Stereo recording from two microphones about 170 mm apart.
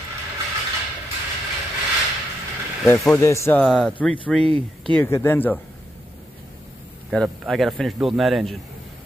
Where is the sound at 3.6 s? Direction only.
5° left (ahead or behind).